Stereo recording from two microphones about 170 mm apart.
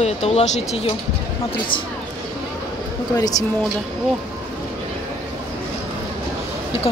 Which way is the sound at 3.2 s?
20° left (ahead or behind).